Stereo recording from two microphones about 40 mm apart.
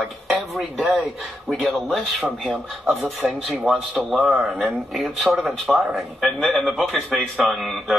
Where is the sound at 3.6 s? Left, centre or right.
Centre.